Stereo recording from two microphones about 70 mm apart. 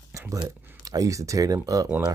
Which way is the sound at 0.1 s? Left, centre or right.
Right.